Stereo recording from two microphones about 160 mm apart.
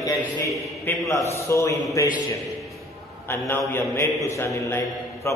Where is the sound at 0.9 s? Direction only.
10° left (ahead or behind).